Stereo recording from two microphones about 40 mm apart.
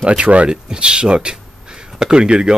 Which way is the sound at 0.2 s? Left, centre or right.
Right.